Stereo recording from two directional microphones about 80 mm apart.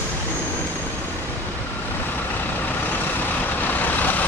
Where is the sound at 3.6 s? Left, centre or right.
Left.